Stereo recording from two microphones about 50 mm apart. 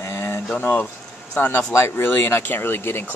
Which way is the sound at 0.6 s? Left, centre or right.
Left.